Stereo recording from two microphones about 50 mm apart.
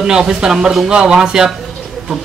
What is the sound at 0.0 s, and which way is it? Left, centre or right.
Speech, centre.